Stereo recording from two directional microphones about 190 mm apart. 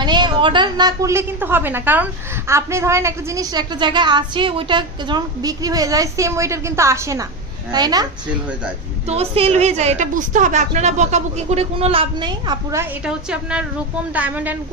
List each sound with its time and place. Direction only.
0.0 s a woman's voice: 25° right (ahead or behind)
9.0 s a woman's voice: 35° right (ahead or behind)
13.0 s a woman's voice: 5° right (ahead or behind)